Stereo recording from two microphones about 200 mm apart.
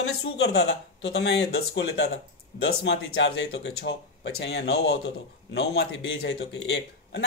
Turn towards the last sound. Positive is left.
turn(degrees=60)  # may be behind; listen again after turning